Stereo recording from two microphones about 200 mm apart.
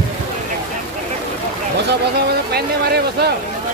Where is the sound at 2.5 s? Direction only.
55° right (ahead or behind).